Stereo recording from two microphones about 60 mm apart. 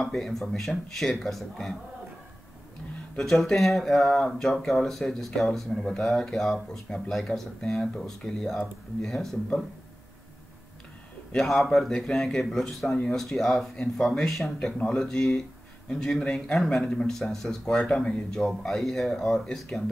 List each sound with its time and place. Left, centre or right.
0.0 s speech: centre
3.2 s speech: centre
11.9 s speech: centre
12.8 s speech: centre
13.1 s speech: centre; by 17.1 s left
17.1 s speech: centre